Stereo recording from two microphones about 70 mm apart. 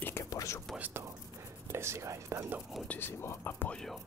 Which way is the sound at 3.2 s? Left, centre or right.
Left.